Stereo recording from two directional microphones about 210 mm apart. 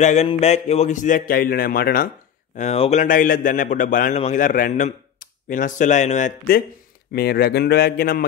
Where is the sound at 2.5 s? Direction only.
30° left (ahead or behind).